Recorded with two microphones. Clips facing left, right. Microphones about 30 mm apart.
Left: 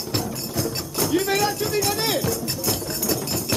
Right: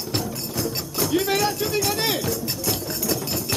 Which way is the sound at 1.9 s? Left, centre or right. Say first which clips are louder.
Left 1 dB; centre.